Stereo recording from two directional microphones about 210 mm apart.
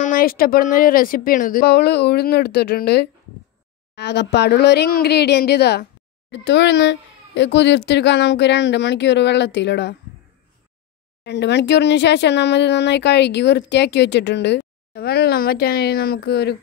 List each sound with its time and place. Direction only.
0.0 s speech: 40° left (ahead or behind)
11.2 s speech: 55° left (ahead or behind)